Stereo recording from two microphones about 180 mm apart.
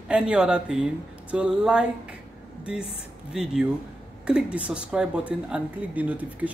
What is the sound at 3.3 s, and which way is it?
Speech, 5° right (ahead or behind).